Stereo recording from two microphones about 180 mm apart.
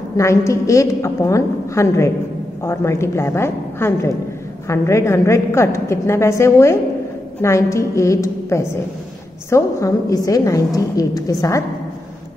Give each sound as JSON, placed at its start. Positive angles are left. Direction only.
{"t": 0.2, "sound": "a woman's voice", "side_deg": 15}